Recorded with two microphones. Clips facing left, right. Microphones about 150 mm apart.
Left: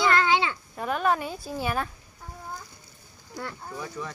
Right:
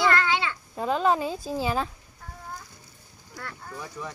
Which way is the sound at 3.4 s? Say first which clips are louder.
Left 3 dB; 20° left (ahead or behind).